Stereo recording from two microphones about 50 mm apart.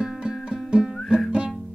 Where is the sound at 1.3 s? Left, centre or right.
Right.